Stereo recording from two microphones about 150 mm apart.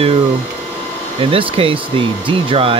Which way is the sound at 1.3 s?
35° right (ahead or behind).